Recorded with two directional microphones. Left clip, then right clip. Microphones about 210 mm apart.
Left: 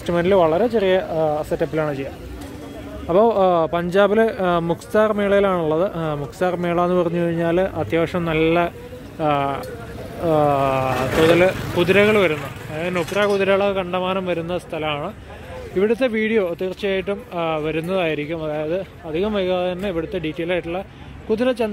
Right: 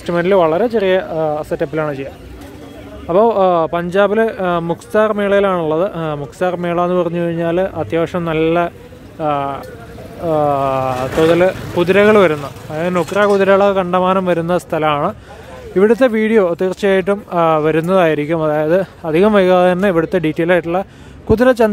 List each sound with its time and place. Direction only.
0.0 s speech: 15° right (ahead or behind)
3.1 s a man's voice: 10° right (ahead or behind); by 21.6 s 30° right (ahead or behind)